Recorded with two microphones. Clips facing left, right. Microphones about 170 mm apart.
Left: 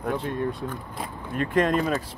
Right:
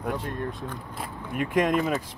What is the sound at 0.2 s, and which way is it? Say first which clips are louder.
Speech: left 4 dB; 45° right (ahead or behind).